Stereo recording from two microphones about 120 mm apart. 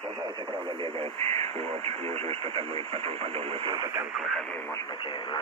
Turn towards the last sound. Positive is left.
turn(degrees=-25)  # may be behind; listen again after turning